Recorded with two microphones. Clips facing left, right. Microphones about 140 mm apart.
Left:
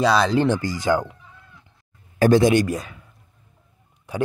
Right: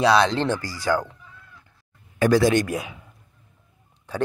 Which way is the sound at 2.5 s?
Centre (ahead or behind).